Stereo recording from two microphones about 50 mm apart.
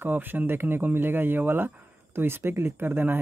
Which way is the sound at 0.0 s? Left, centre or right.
Right.